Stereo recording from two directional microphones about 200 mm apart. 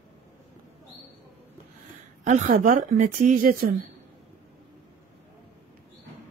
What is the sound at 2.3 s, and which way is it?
A woman's voice, 40° right (ahead or behind).